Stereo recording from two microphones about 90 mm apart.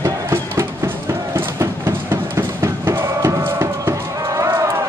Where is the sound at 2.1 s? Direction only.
30° right (ahead or behind).